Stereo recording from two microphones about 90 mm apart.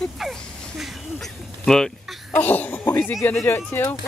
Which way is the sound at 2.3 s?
20° left (ahead or behind).